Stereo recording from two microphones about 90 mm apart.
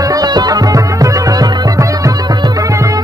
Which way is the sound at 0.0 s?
45° right (ahead or behind).